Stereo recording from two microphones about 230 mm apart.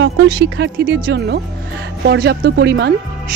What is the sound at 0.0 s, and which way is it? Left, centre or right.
Speech, right.